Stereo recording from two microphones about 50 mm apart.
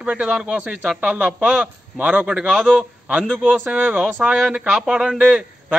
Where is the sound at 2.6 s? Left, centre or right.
Centre.